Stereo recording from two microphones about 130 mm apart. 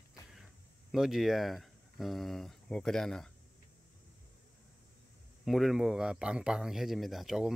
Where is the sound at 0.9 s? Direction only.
Centre (ahead or behind).